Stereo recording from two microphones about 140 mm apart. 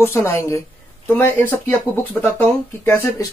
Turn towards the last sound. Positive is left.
turn(degrees=15)  # may be behind; listen again after turning